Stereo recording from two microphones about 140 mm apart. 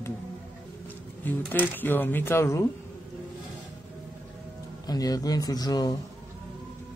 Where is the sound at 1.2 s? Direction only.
10° left (ahead or behind).